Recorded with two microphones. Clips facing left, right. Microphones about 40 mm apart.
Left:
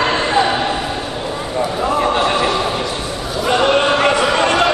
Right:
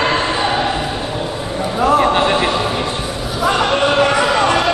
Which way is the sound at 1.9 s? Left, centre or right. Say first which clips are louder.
Even; centre.